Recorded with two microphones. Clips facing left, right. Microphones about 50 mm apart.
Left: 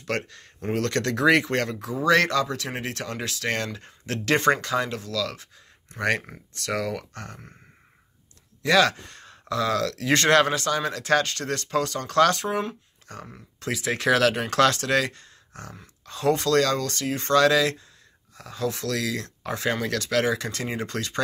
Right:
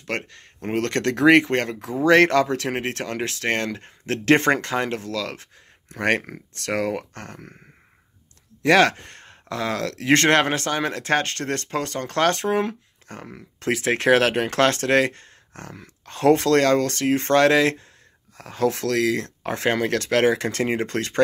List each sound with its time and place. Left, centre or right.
0.0 s speech: right
2.2 s speech: right
8.6 s speech: right
12.4 s speech: right
13.3 s speech: right